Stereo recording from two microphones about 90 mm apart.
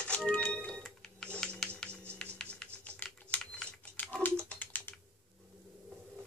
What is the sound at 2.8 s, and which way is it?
Typing, 20° left (ahead or behind).